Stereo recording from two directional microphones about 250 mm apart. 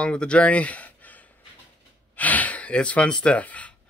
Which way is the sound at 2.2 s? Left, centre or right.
Centre.